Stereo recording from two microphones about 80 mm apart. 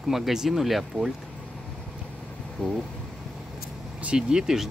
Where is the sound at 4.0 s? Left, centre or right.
Centre.